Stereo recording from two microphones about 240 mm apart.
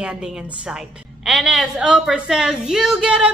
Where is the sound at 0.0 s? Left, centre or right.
Centre.